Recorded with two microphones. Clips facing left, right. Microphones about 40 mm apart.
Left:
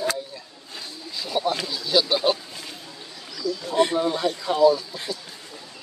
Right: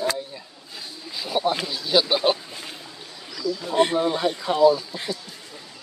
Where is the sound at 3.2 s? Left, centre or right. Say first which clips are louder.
Right 1 dB; centre.